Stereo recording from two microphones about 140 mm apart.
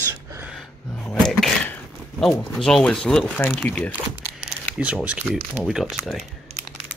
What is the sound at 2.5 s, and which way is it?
Speech, 5° left (ahead or behind).